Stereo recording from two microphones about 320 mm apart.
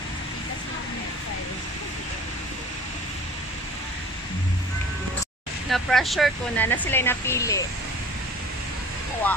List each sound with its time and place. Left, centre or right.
5.7 s speech: centre